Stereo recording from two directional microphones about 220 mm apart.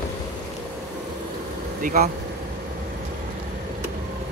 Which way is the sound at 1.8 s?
40° right (ahead or behind).